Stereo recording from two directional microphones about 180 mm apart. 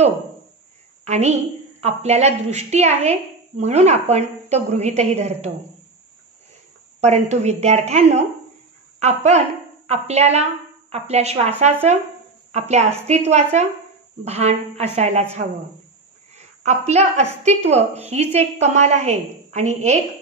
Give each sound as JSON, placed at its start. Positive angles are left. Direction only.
{"t": 1.0, "sound": "a woman's voice", "side_deg": -40}
{"t": 7.0, "sound": "a woman's voice", "side_deg": -40}
{"t": 16.3, "sound": "a woman's voice", "side_deg": -40}